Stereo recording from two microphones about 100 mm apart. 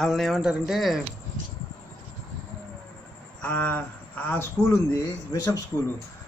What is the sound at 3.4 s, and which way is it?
Speech, 15° left (ahead or behind).